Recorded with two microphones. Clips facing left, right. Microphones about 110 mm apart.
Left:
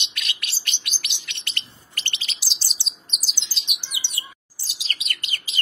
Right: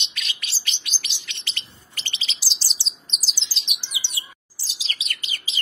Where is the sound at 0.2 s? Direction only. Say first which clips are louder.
Left 1 dB; 60° left (ahead or behind).